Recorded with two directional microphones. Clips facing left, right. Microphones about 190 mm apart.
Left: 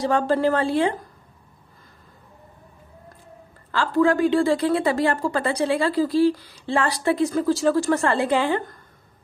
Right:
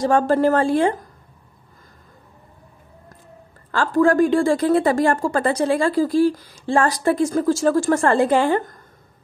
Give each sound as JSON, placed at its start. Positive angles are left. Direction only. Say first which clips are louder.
{"t": 0.0, "sound": "a woman's voice", "louder": "right 3 dB", "side_deg": -45}
{"t": 3.7, "sound": "a woman's voice", "louder": "right 3 dB", "side_deg": -45}